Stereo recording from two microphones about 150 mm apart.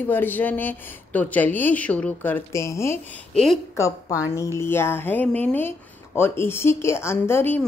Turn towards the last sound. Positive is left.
turn(degrees=15)  # may be behind; listen again after turning